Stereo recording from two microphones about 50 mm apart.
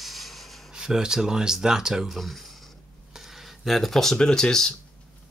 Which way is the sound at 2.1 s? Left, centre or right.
Centre.